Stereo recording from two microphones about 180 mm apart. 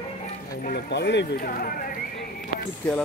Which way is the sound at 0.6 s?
70° left (ahead or behind).